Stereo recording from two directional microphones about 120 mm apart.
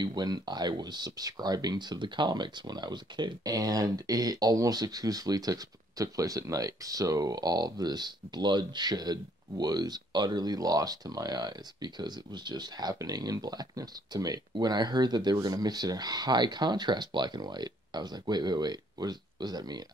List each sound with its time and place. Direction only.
0.0 s speech: 35° right (ahead or behind)